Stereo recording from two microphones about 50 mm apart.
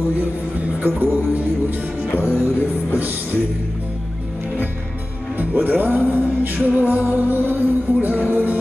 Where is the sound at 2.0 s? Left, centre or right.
Left.